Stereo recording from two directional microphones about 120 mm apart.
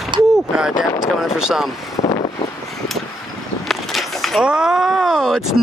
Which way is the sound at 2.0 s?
70° left (ahead or behind).